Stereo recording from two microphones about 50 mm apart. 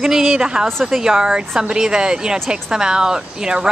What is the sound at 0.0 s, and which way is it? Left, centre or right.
Speech, centre.